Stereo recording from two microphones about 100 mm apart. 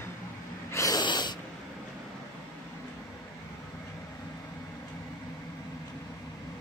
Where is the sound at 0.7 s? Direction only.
35° left (ahead or behind).